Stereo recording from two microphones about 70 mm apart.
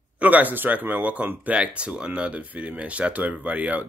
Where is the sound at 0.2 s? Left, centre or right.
Right.